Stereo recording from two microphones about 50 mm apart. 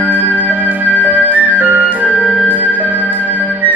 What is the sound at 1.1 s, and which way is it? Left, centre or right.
Flute, right.